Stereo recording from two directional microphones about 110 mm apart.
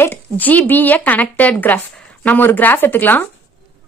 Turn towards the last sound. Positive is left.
turn(degrees=15)  # may be behind; listen again after turning